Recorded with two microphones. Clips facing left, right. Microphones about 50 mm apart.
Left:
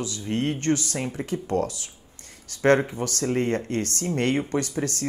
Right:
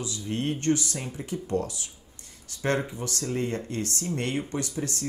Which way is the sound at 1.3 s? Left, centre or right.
Left.